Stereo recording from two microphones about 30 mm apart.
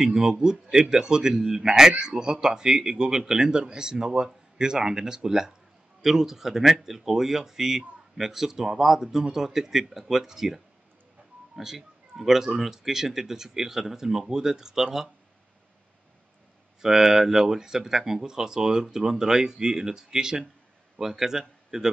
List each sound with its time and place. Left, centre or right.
0.0 s speech: right
16.8 s speech: centre